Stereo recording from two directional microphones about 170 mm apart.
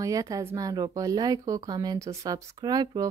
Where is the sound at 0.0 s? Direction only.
20° right (ahead or behind).